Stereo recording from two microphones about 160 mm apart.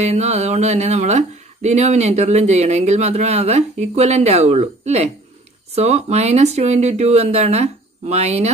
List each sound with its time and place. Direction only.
0.0 s speech: 40° right (ahead or behind)